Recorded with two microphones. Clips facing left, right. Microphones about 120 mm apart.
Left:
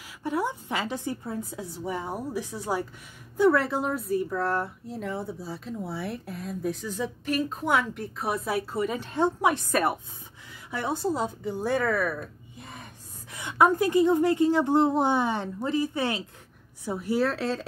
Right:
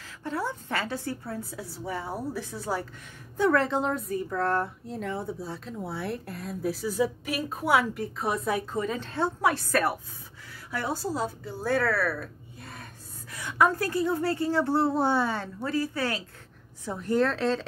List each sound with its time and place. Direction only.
0.0 s a woman's voice: 15° left (ahead or behind)
16.8 s a woman's voice: 10° left (ahead or behind)